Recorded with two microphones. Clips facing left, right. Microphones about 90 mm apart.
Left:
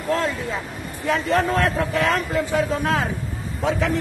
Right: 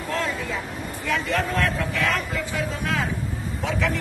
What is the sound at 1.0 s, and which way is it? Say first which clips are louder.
Speech: left 5 dB; 35° left (ahead or behind).